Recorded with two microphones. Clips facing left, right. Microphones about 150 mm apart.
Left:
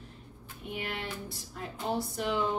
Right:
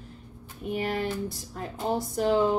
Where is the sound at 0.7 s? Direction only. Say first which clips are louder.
Right 9 dB; 40° right (ahead or behind).